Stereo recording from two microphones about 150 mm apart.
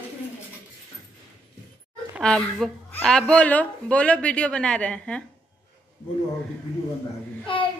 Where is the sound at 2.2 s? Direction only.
5° left (ahead or behind).